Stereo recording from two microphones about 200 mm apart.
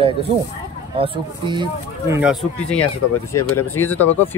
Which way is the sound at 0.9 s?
25° right (ahead or behind).